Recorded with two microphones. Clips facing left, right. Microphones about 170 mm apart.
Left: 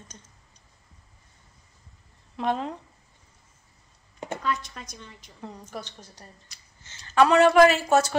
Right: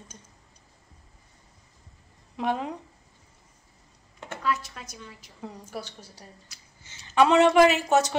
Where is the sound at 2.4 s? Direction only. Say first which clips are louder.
Left 1 dB; 10° right (ahead or behind).